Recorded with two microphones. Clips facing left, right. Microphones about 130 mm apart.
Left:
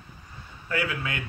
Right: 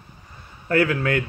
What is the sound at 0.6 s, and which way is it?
Speech, 55° right (ahead or behind).